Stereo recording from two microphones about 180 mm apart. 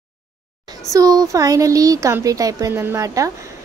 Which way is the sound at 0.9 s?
20° right (ahead or behind).